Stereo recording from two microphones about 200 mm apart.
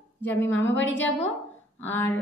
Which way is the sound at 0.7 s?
65° left (ahead or behind).